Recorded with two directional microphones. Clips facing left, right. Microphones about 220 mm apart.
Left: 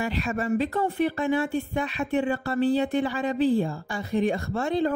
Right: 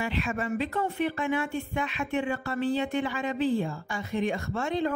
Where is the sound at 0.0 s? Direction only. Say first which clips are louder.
Left 3 dB; 40° left (ahead or behind).